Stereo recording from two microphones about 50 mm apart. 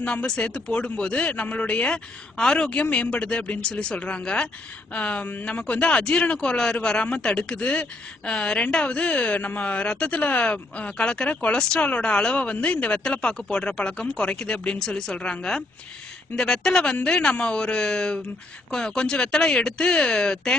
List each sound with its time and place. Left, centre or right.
0.0 s speech: left
9.8 s speech: left